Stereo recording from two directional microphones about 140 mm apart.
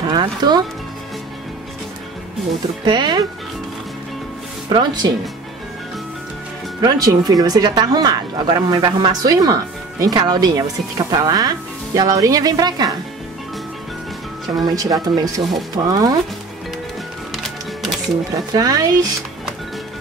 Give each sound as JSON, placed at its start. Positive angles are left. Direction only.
{"t": 0.1, "sound": "speech", "side_deg": -30}
{"t": 2.8, "sound": "speech", "side_deg": -30}
{"t": 4.6, "sound": "speech", "side_deg": -30}
{"t": 6.8, "sound": "speech", "side_deg": -25}
{"t": 14.5, "sound": "speech", "side_deg": -25}
{"t": 17.3, "sound": "music", "side_deg": 0}
{"t": 18.3, "sound": "speech", "side_deg": -25}